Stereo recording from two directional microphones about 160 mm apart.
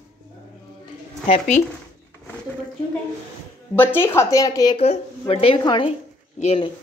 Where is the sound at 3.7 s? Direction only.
10° left (ahead or behind).